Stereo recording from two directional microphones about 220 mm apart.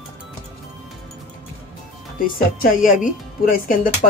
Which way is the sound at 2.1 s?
40° left (ahead or behind).